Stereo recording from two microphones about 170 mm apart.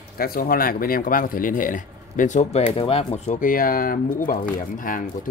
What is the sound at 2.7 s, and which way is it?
Speech, 35° left (ahead or behind).